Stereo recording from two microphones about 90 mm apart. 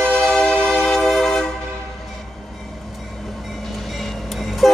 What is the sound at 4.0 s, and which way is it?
Vehicle, centre (ahead or behind).